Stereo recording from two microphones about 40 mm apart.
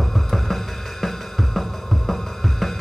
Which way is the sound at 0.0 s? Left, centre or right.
Centre.